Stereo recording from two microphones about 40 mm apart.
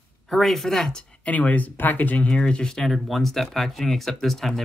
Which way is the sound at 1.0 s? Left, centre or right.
Left.